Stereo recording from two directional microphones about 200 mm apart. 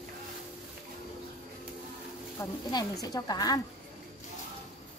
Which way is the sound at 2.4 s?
20° left (ahead or behind).